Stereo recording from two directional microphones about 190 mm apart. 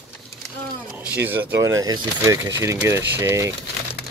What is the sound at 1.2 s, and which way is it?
Speech, 10° right (ahead or behind).